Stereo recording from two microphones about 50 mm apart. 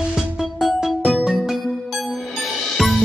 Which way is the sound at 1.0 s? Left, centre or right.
Centre.